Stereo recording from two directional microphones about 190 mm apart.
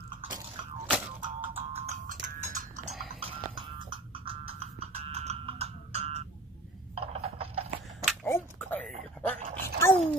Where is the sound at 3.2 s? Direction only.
25° right (ahead or behind).